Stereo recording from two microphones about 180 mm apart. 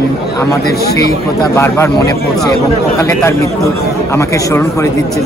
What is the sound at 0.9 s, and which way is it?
Speech, 15° left (ahead or behind).